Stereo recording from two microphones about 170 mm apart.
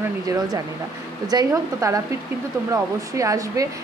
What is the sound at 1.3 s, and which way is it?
Speech, 20° right (ahead or behind).